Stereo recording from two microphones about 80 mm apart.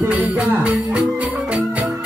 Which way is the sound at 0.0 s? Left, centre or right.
Right.